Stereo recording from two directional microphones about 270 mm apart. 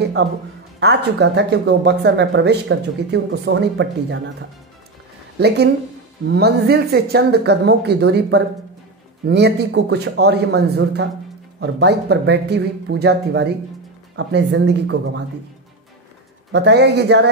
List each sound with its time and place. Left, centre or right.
0.2 s speech: right
6.2 s speech: right
11.6 s speech: right
16.5 s speech: right